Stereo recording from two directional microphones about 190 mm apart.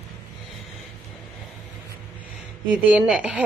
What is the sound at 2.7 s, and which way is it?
Speech, 5° right (ahead or behind).